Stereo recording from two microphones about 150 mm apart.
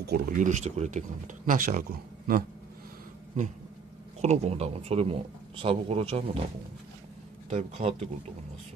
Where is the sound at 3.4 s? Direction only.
55° right (ahead or behind).